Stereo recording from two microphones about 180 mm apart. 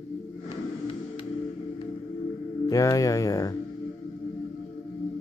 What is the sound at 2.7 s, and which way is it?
Speech, 20° left (ahead or behind).